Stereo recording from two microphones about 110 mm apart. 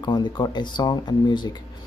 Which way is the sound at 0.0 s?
40° left (ahead or behind).